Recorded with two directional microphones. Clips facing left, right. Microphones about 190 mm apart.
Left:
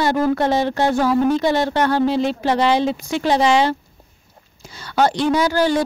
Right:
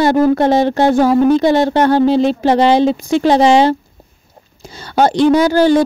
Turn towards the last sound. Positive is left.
turn(degrees=-25)  # may be behind; listen again after turning